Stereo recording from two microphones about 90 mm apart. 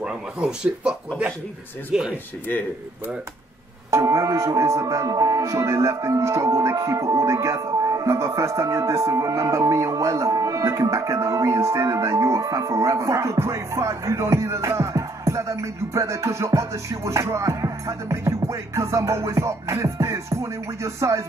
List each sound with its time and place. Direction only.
0.0 s speech: 10° right (ahead or behind)
3.9 s speech: 40° right (ahead or behind)